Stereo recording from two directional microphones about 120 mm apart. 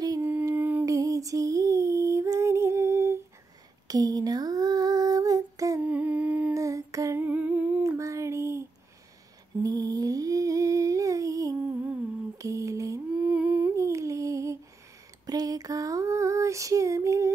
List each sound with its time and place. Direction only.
0.2 s a sound: 15° right (ahead or behind)
0.5 s humming: 15° right (ahead or behind)
0.8 s lullaby: 30° right (ahead or behind)
3.8 s a sound: 30° right (ahead or behind)
5.9 s humming: 10° right (ahead or behind)
6.5 s humming: 25° right (ahead or behind)
7.2 s humming: 15° right (ahead or behind)
8.0 s a sound: 25° right (ahead or behind)
11.6 s humming: 15° right (ahead or behind)
12.4 s mantra: 25° right (ahead or behind)
13.3 s humming: 10° right (ahead or behind)
13.7 s a sound: 25° right (ahead or behind)
15.2 s female singing: 30° right (ahead or behind)